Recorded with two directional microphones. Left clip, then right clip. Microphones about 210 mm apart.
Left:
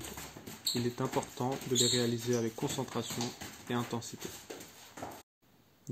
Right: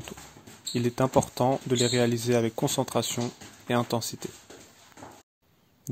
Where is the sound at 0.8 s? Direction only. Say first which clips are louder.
Right 10 dB; 55° right (ahead or behind).